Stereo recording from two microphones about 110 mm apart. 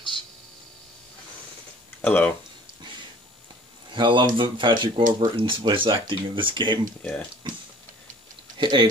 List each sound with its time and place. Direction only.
2.0 s speech: 15° left (ahead or behind)
3.9 s speech: 45° right (ahead or behind)
7.0 s speech: 15° left (ahead or behind)
8.5 s typing: 45° right (ahead or behind)